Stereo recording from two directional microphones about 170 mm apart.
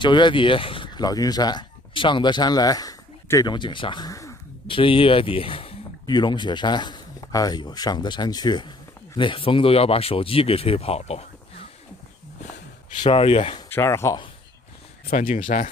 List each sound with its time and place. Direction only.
0.0 s speech: 25° left (ahead or behind)
4.6 s speech: 30° left (ahead or behind)
13.0 s speech: 30° left (ahead or behind)
13.7 s speech: 15° left (ahead or behind)
15.0 s speech: 45° left (ahead or behind)